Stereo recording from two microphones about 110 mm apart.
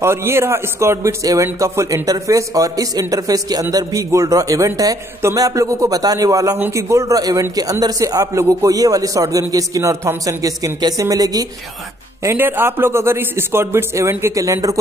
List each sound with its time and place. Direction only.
0.0 s a man's voice: 25° right (ahead or behind)
12.2 s a man's voice: 20° right (ahead or behind)